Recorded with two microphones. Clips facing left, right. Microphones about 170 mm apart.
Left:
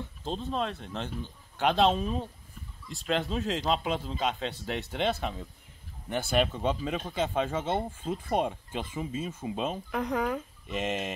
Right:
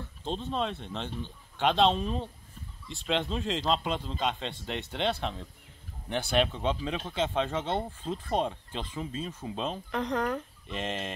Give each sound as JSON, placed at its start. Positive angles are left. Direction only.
{"t": 0.2, "sound": "speech", "side_deg": 0}